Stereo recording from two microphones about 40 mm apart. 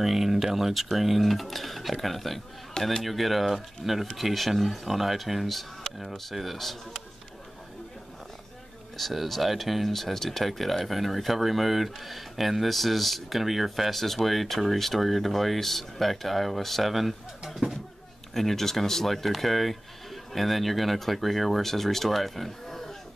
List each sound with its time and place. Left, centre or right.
0.0 s speech: centre
8.9 s speech: centre